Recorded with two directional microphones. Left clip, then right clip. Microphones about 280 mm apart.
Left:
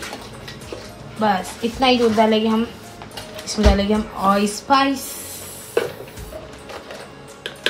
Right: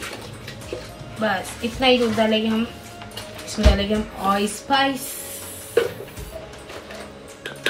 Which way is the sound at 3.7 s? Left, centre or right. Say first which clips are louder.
Left 3 dB; left.